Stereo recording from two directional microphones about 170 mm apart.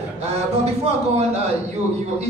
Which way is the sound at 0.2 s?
35° right (ahead or behind).